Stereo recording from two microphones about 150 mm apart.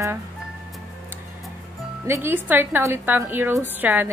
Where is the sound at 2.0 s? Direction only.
15° right (ahead or behind).